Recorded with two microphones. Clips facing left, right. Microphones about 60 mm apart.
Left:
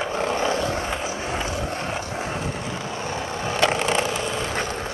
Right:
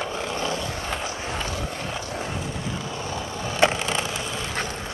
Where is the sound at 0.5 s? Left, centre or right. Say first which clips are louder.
Left 5 dB; left.